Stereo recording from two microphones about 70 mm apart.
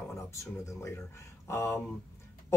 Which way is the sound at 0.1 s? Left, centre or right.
Left.